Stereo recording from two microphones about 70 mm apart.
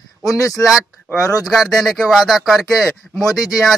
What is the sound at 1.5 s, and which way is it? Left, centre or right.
Speech, centre.